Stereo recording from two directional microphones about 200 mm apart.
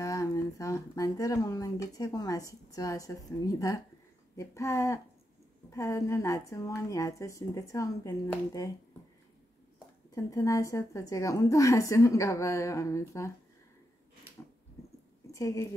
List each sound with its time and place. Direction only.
0.0 s a woman's voice: 15° left (ahead or behind)
10.1 s a woman's voice: 15° left (ahead or behind)
15.3 s a woman's voice: 15° left (ahead or behind)